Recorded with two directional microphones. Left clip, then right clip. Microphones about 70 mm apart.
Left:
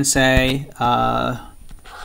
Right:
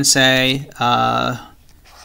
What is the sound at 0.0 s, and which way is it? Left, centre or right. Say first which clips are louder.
Speech: right 3 dB; centre.